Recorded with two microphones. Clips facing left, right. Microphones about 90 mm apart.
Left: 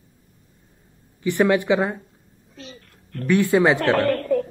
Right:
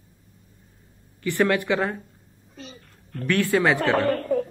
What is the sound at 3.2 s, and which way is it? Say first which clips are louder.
Speech: left 4 dB; 15° left (ahead or behind).